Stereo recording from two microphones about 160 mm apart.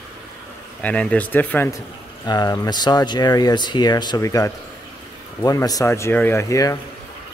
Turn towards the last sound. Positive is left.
turn(degrees=20)  # may be behind; listen again after turning